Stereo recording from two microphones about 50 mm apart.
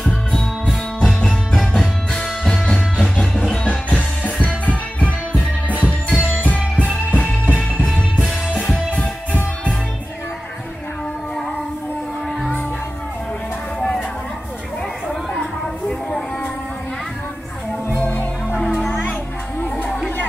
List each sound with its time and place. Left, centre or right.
1.0 s music: centre
3.6 s music: left